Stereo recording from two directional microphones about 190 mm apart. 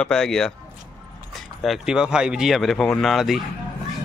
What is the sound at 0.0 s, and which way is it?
Speech, 5° left (ahead or behind).